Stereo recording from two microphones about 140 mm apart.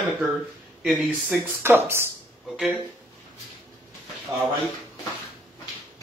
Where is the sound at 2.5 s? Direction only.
5° right (ahead or behind).